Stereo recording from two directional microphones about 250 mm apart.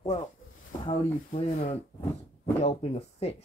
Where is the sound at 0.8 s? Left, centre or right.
Left.